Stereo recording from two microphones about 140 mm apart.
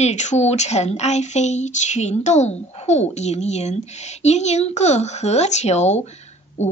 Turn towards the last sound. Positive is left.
turn(degrees=55)  # may be behind; listen again after turning